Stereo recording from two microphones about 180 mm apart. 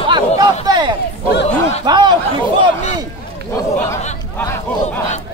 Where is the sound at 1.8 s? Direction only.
25° right (ahead or behind).